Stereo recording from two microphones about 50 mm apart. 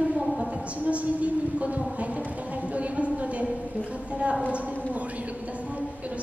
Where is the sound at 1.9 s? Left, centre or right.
Right.